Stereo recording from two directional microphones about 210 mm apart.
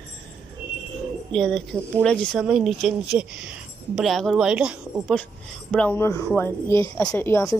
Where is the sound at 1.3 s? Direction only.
5° left (ahead or behind).